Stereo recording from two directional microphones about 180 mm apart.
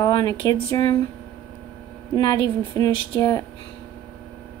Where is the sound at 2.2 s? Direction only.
25° left (ahead or behind).